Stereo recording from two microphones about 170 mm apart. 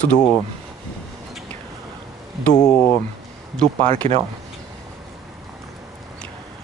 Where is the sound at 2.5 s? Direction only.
20° left (ahead or behind).